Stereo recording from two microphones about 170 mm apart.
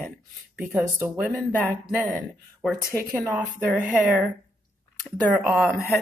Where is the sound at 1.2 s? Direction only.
5° left (ahead or behind).